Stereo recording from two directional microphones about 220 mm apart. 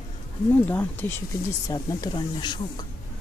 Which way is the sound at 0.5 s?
10° left (ahead or behind).